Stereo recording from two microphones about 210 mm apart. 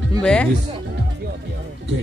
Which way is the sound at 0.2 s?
5° left (ahead or behind).